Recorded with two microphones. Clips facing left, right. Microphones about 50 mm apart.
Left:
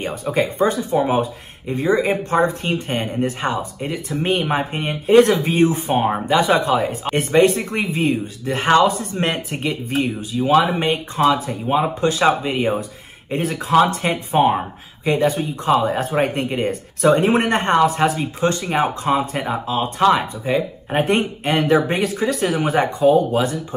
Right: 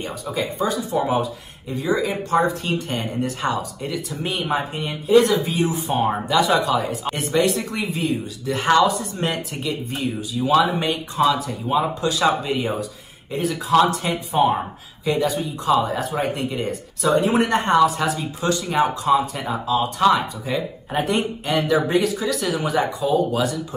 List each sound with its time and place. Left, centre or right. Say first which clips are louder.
0.0 s speech: left 5 dB; left
23.3 s speech: left 3 dB; left